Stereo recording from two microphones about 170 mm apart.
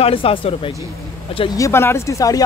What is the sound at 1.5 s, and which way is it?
Speech, 15° left (ahead or behind).